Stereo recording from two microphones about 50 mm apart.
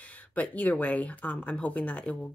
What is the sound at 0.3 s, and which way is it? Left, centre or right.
Speech, left.